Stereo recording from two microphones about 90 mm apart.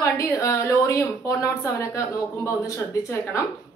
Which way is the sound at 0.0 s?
35° left (ahead or behind).